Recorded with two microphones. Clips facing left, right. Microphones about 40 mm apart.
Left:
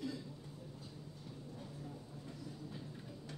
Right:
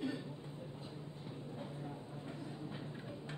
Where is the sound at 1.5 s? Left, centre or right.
Right.